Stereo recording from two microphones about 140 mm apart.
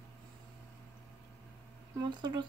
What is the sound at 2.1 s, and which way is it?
Speech, 30° right (ahead or behind).